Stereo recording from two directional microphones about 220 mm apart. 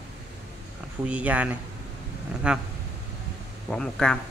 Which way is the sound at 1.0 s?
5° right (ahead or behind).